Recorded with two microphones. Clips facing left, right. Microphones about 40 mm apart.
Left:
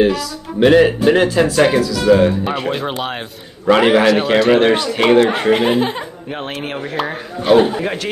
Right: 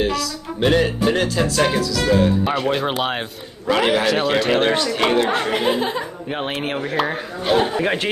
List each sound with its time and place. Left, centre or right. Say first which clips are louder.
0.0 s speech: left 6 dB; centre
2.5 s a man's voice: even; centre
3.6 s speech: left 6 dB; left
4.4 s speech: left 5 dB; centre
4.8 s speech: left 6 dB; centre
5.5 s speech: left 5 dB; left
6.3 s speech: right 1 dB; centre
7.8 s speech: right 1 dB; right